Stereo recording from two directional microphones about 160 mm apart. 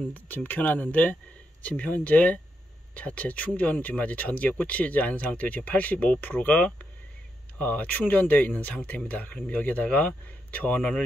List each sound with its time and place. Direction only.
0.1 s speech: 10° left (ahead or behind)